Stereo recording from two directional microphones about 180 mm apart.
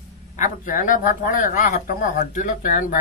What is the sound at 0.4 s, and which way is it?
Speech, 45° left (ahead or behind).